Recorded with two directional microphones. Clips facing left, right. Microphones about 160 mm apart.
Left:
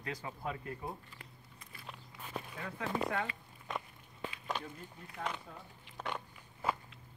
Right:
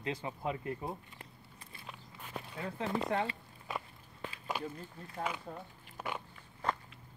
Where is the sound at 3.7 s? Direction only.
5° right (ahead or behind).